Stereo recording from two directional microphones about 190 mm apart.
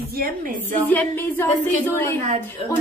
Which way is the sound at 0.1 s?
45° right (ahead or behind).